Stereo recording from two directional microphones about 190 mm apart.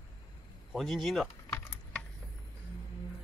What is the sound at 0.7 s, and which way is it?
Keys jangling, centre (ahead or behind).